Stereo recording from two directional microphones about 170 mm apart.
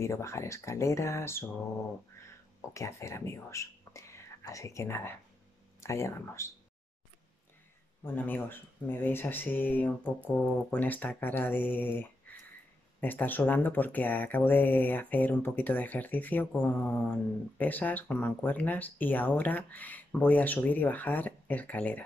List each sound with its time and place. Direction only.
0.0 s speech: 15° left (ahead or behind)
2.7 s speech: 15° left (ahead or behind)
8.0 s speech: 10° left (ahead or behind)